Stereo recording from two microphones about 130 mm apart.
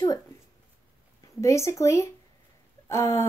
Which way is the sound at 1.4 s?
20° left (ahead or behind).